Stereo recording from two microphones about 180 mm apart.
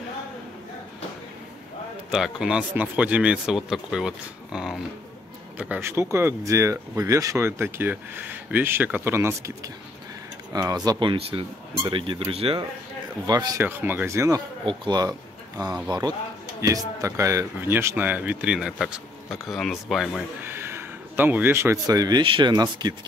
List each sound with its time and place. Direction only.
2.0 s speech: centre (ahead or behind)
10.5 s speech: 20° right (ahead or behind)
13.3 s speech: 20° right (ahead or behind)
14.6 s speech: 25° right (ahead or behind); by 20.2 s centre (ahead or behind)
20.4 s speech: 15° right (ahead or behind)